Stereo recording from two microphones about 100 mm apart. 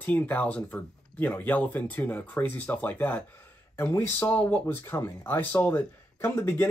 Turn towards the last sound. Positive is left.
turn(degrees=25)  # may be behind; listen again after turning